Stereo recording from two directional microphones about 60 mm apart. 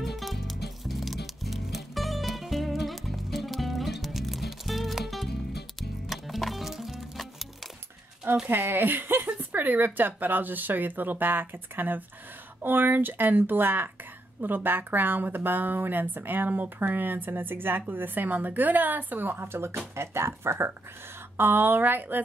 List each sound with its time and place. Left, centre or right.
0.0 s music: centre
8.5 s speech: right